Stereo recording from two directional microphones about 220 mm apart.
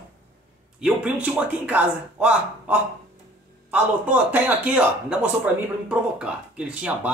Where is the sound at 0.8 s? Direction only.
5° right (ahead or behind).